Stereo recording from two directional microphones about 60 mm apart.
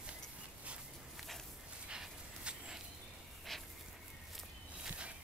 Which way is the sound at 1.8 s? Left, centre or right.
Centre.